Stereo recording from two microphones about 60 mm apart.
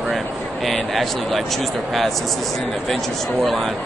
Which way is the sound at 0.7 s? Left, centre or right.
Centre.